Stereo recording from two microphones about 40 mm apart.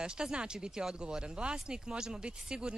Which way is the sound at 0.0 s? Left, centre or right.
Right.